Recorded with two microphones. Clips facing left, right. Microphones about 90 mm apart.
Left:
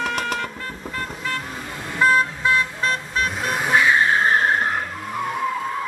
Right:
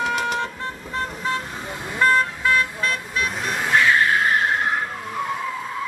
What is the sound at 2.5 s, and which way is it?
Vehicle, 30° left (ahead or behind).